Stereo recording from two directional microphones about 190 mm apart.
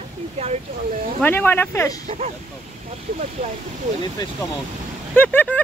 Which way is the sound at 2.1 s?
35° right (ahead or behind).